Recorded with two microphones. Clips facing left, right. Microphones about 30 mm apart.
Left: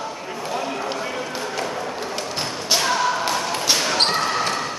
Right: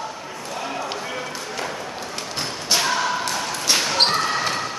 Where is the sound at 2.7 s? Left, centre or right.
Centre.